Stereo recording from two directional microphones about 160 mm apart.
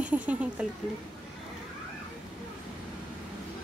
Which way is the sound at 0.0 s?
10° right (ahead or behind).